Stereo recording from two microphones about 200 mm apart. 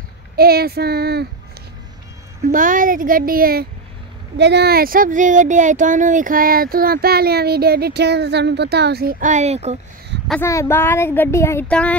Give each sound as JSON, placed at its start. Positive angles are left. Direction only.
{"t": 0.4, "sound": "speech", "side_deg": -50}
{"t": 2.4, "sound": "speech", "side_deg": -40}
{"t": 4.4, "sound": "speech", "side_deg": -55}
{"t": 10.4, "sound": "speech", "side_deg": 15}